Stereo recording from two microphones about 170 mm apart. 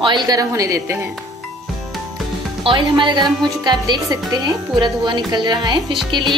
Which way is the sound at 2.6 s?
30° right (ahead or behind).